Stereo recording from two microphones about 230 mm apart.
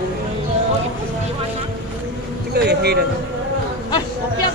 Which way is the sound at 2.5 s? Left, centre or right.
Right.